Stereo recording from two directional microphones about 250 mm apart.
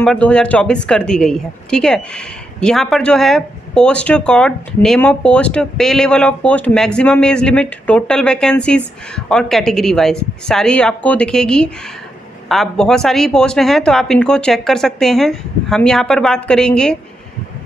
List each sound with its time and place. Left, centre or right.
0.0 s a woman's voice: centre